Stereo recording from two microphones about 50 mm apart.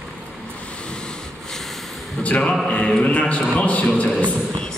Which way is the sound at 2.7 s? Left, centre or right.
Centre.